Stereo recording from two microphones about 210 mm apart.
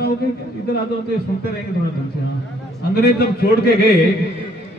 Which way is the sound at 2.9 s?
50° left (ahead or behind).